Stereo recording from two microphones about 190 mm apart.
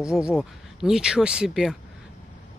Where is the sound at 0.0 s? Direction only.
5° right (ahead or behind).